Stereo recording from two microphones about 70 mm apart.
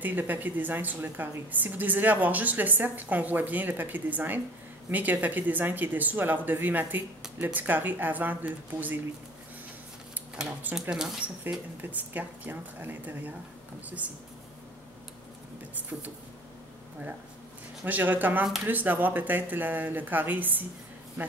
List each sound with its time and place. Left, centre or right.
0.0 s speech: right
10.7 s speech: centre
11.8 s speech: right
17.8 s speech: right